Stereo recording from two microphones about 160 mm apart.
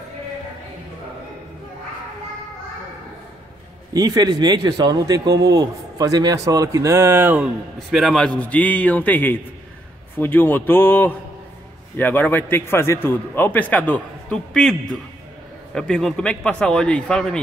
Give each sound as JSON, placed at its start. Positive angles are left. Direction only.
{"t": 3.9, "sound": "a man's voice", "side_deg": -25}
{"t": 7.9, "sound": "a man's voice", "side_deg": 0}